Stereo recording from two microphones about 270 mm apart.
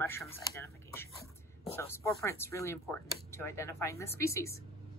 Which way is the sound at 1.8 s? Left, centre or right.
Centre.